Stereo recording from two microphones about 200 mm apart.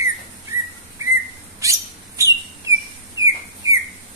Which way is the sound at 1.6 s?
15° right (ahead or behind).